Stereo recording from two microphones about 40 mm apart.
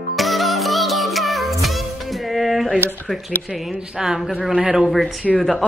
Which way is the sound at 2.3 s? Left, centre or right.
Centre.